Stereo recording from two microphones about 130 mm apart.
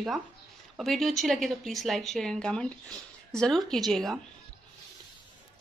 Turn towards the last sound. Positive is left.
turn(degrees=0)  # may be behind; listen again after turning